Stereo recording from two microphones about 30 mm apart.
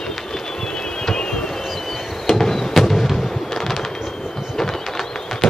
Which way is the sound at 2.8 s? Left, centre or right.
Centre.